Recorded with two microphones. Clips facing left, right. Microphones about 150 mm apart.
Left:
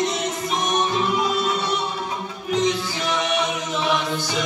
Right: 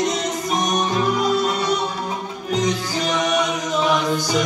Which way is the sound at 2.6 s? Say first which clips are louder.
Right 1 dB; 40° right (ahead or behind).